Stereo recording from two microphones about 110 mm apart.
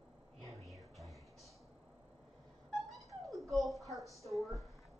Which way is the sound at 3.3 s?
Centre (ahead or behind).